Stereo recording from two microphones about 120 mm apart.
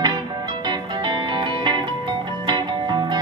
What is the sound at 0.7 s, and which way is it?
Music, 40° right (ahead or behind).